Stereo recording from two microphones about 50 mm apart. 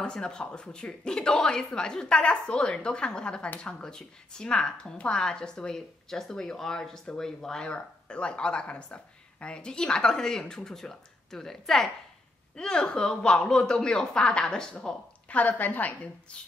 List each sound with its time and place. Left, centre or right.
0.0 s speech: centre
12.5 s speech: centre
15.2 s a woman's voice: left
16.3 s speech: centre